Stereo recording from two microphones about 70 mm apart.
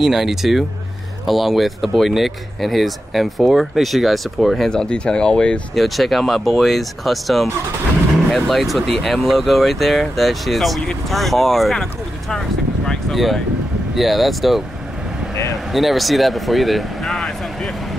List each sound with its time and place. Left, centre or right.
0.0 s speech: centre
4.6 s speech: centre
5.8 s speech: centre
15.7 s speech: centre